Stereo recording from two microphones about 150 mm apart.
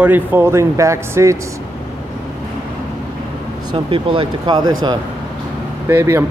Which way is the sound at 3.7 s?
35° right (ahead or behind).